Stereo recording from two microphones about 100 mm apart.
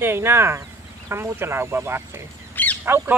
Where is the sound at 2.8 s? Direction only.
20° right (ahead or behind).